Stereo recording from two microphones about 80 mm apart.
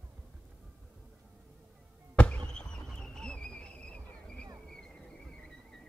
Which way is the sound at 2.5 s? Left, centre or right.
Centre.